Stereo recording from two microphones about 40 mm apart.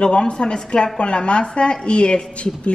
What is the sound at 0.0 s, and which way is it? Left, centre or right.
A woman's voice, left.